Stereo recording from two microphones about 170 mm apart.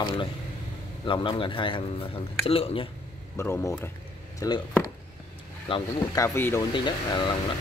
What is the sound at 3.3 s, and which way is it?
Speech, 15° left (ahead or behind).